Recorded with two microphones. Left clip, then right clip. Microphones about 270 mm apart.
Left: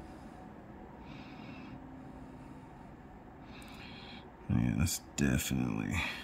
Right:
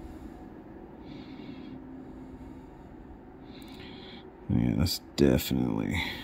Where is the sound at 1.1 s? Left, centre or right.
Centre.